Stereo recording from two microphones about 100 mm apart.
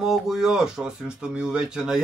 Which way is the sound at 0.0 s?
5° right (ahead or behind).